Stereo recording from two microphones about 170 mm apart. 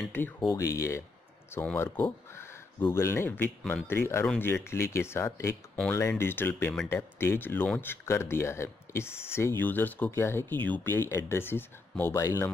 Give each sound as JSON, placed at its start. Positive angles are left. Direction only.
{"t": 0.0, "sound": "speech", "side_deg": 5}